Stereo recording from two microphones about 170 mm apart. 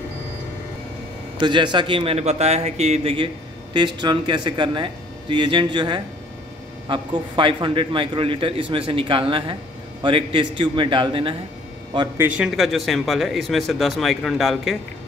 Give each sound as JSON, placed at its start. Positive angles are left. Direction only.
{"t": 1.4, "sound": "a man's voice", "side_deg": -30}
{"t": 12.2, "sound": "speech", "side_deg": -5}